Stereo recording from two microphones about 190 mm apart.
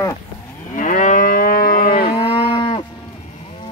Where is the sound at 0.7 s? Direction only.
40° left (ahead or behind).